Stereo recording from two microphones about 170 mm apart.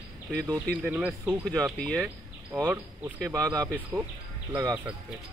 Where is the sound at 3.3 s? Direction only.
20° right (ahead or behind).